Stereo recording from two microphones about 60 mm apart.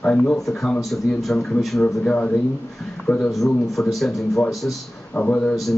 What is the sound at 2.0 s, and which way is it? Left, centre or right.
Speech, centre.